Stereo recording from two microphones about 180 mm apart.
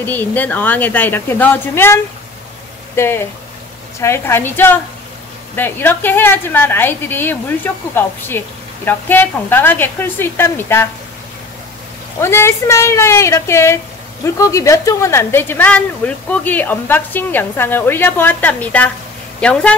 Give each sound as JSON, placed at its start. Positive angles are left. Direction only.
{"t": 0.0, "sound": "a woman's voice", "side_deg": 10}
{"t": 3.0, "sound": "a woman's voice", "side_deg": 15}
{"t": 12.2, "sound": "a woman's voice", "side_deg": 15}